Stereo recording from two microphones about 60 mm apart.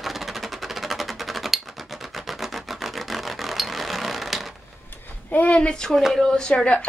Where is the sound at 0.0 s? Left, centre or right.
Centre.